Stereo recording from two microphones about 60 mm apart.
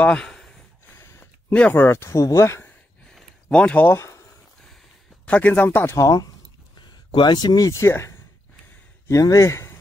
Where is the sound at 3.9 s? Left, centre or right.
Left.